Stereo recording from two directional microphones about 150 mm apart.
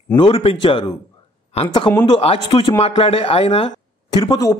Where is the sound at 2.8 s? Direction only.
40° left (ahead or behind).